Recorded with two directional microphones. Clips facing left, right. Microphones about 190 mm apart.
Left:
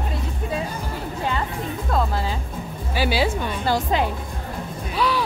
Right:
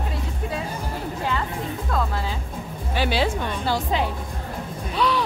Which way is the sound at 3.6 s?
45° left (ahead or behind).